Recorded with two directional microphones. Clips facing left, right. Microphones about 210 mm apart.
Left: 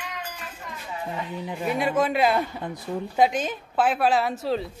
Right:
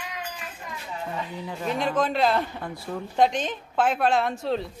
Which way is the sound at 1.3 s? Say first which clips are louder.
Left 3 dB; 20° left (ahead or behind).